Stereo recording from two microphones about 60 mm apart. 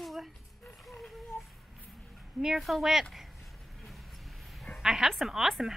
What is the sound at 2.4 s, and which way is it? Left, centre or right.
Speech, centre.